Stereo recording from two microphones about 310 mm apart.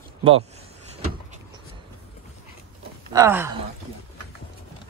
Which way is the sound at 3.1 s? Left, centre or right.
Centre.